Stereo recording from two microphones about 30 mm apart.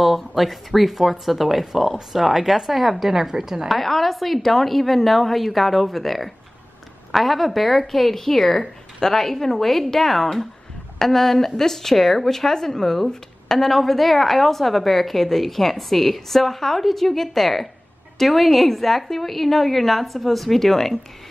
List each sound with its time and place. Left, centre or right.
0.0 s a woman's voice: centre
3.2 s a woman's voice: centre
3.6 s a woman's voice: centre